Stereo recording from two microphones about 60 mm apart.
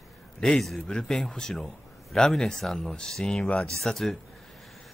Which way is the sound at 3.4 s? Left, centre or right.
Centre.